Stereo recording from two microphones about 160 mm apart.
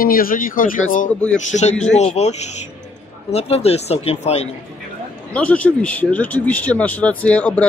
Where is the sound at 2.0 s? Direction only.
45° left (ahead or behind).